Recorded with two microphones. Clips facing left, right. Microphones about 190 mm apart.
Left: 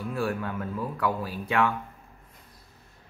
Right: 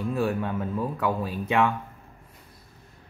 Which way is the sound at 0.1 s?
20° right (ahead or behind).